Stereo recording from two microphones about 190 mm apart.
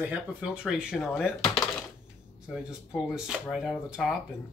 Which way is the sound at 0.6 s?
Centre (ahead or behind).